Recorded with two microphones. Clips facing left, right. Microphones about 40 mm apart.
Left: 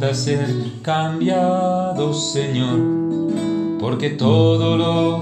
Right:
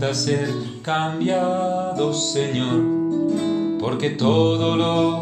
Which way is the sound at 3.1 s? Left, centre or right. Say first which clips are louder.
Even; left.